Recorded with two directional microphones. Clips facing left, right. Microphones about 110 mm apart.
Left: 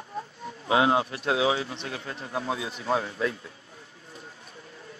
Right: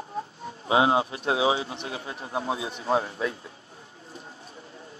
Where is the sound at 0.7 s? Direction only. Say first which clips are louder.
Right 1 dB; 25° right (ahead or behind).